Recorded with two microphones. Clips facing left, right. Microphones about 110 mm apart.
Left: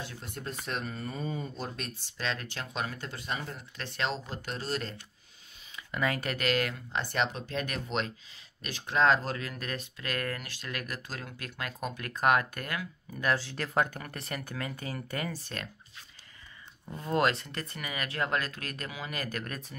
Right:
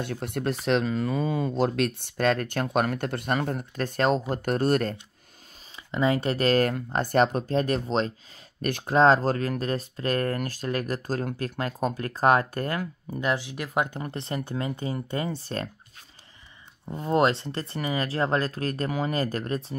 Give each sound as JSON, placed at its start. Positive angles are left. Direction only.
{"t": 0.0, "sound": "speech", "side_deg": -65}
{"t": 5.9, "sound": "speech", "side_deg": -25}
{"t": 8.6, "sound": "speech", "side_deg": -55}
{"t": 8.9, "sound": "speech", "side_deg": -35}
{"t": 13.2, "sound": "speech", "side_deg": -20}
{"t": 16.8, "sound": "speech", "side_deg": -25}